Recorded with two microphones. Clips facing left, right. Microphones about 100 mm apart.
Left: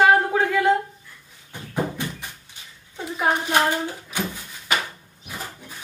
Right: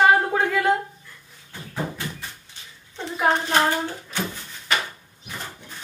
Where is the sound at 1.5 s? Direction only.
15° left (ahead or behind).